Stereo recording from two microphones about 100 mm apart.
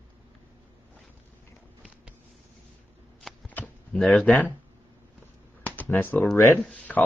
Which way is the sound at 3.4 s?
15° left (ahead or behind).